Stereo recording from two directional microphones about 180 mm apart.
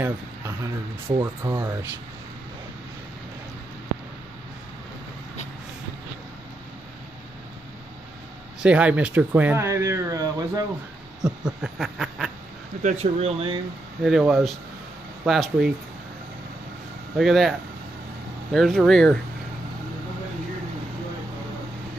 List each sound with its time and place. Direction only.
0.0 s speech: 15° right (ahead or behind)
8.6 s speech: 10° right (ahead or behind)
11.1 s a sound: 20° right (ahead or behind)
11.6 s snicker: centre (ahead or behind)
12.8 s speech: 35° right (ahead or behind)
14.0 s snicker: 5° right (ahead or behind)
17.2 s snicker: centre (ahead or behind)